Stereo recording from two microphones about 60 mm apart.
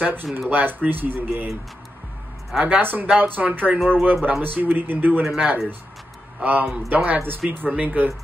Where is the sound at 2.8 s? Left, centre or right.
Right.